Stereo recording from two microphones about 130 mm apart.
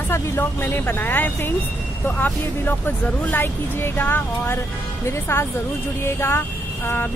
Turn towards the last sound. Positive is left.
turn(degrees=15)  # may be behind; listen again after turning